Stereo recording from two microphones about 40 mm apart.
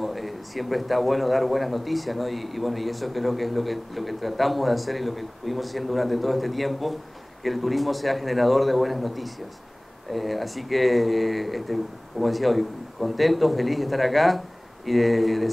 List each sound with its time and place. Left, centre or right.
0.0 s a man's voice: centre